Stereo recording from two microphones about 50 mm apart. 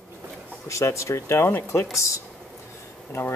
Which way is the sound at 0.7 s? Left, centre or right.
Left.